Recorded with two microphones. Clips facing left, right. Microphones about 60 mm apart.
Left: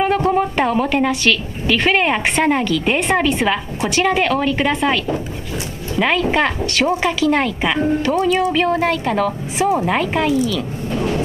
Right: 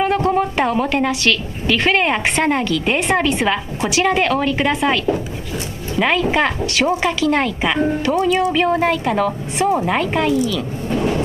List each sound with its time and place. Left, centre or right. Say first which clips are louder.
0.0 s a woman's voice: even; centre